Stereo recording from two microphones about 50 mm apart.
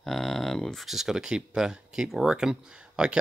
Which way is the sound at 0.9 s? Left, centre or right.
Centre.